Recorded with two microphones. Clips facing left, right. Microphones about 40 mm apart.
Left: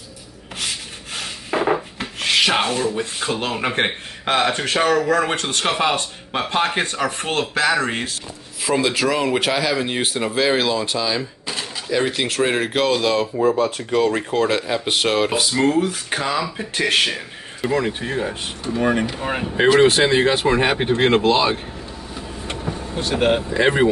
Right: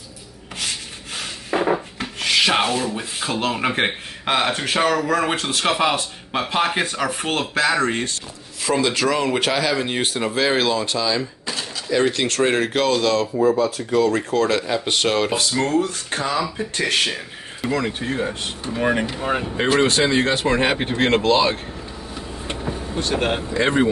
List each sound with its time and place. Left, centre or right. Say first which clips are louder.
0.6 s rub: left 1 dB; centre
5.1 s speech: left 1 dB; centre
13.4 s speech: right 1 dB; left
13.9 s speech: even; left; by 18.3 s centre
18.8 s speech: left 1 dB; centre
19.1 s speech: left 1 dB; centre
20.5 s speech: left 2 dB; centre
22.1 s vehicle: even; centre
22.9 s speech: left 4 dB; centre
23.5 s speech: right 1 dB; centre